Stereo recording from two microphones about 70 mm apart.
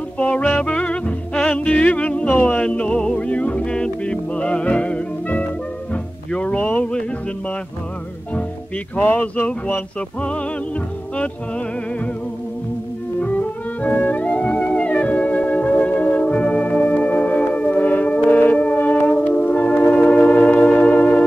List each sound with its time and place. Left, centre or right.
0.2 s music: centre
8.9 s music: left
13.8 s music: left